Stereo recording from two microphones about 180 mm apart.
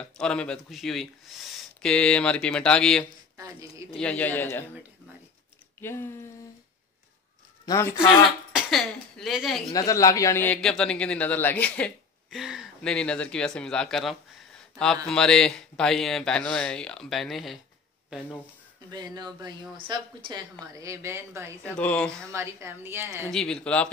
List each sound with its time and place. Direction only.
0.0 s a man's voice: 5° left (ahead or behind)
3.3 s a woman's voice: 20° right (ahead or behind)
4.0 s a man's voice: 10° left (ahead or behind)
5.8 s speech: 15° left (ahead or behind)
7.6 s speech: 20° left (ahead or behind)
8.5 s a man's voice: centre (ahead or behind)
9.7 s a man's voice: 20° left (ahead or behind); by 17.6 s centre (ahead or behind)
18.9 s a woman's voice: 20° right (ahead or behind)
21.6 s a man's voice: 5° left (ahead or behind)
22.3 s a woman's voice: 15° right (ahead or behind)
23.3 s a man's voice: 5° left (ahead or behind)